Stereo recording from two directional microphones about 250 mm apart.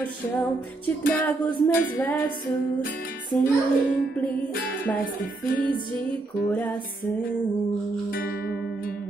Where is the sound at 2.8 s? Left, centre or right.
Left.